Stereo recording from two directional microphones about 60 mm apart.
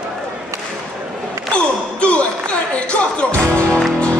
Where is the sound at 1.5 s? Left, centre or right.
Centre.